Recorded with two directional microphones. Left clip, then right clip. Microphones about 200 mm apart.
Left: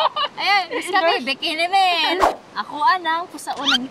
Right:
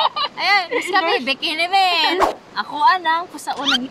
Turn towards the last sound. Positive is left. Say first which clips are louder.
# even
turn(degrees=0)  # may be behind; listen again after turning